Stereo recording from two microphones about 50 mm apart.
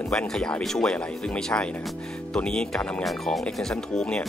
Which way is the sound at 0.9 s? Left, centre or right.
Left.